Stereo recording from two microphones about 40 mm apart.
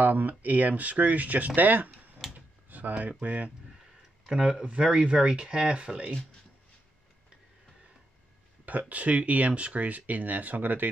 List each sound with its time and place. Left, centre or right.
0.0 s speech: right
2.2 s drawer open or close: centre
2.7 s speech: right
4.3 s speech: centre
8.6 s speech: right